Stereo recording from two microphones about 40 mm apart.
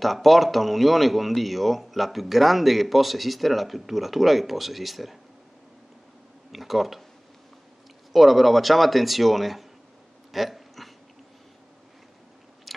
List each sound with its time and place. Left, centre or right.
0.0 s speech: centre
6.5 s speech: centre
8.1 s speech: centre
10.3 s a sound: centre
12.7 s biting: centre